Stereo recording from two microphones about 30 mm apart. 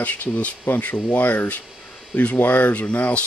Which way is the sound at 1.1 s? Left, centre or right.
Left.